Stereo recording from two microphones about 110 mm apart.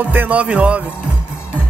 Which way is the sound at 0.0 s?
15° right (ahead or behind).